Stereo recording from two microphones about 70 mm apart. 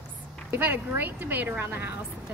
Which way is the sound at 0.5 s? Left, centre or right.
Right.